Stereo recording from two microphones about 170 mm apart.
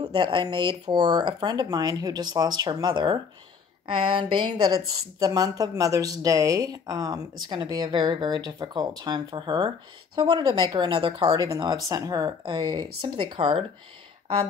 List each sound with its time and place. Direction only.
0.0 s speech: 25° right (ahead or behind)